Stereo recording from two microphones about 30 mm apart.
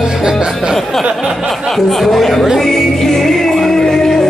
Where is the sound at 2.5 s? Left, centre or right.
Centre.